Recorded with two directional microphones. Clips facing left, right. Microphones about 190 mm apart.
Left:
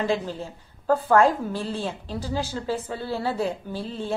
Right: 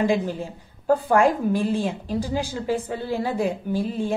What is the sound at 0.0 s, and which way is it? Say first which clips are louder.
A woman's voice: right 4 dB; 15° right (ahead or behind).